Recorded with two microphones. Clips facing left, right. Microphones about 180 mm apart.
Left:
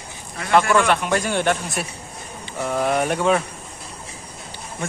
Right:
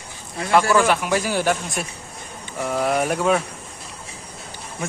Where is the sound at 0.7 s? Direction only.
5° right (ahead or behind).